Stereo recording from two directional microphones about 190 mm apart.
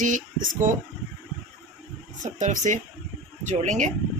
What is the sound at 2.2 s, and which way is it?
Speech, 40° right (ahead or behind).